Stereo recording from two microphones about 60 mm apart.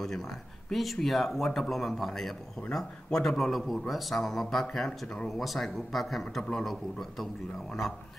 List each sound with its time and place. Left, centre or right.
0.7 s a man's voice: centre
5.0 s speech: centre
5.3 s a man's voice: centre